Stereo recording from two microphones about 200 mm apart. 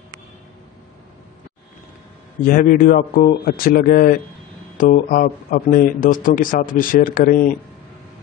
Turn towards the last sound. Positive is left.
turn(degrees=45)  # may be behind; listen again after turning